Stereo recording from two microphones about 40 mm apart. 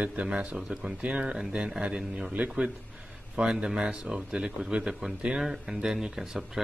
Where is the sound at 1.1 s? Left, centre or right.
Right.